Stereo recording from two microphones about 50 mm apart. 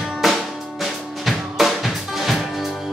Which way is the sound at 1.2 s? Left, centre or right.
Centre.